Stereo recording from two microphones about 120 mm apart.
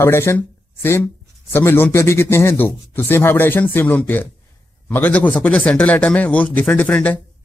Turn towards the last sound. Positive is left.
turn(degrees=15)  # may be behind; listen again after turning